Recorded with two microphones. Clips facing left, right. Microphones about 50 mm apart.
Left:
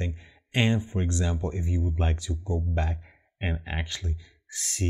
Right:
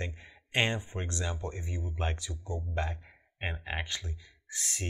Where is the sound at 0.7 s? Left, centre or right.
Centre.